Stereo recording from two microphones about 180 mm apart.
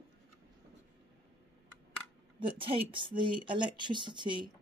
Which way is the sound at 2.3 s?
30° right (ahead or behind).